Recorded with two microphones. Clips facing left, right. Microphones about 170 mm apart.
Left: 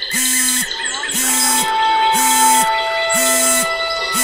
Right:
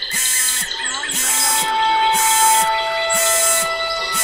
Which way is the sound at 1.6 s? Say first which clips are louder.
Left 1 dB; 60° left (ahead or behind).